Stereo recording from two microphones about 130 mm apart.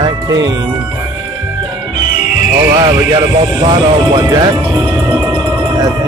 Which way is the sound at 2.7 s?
40° right (ahead or behind).